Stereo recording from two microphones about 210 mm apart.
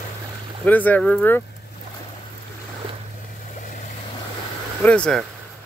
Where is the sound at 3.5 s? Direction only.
40° left (ahead or behind).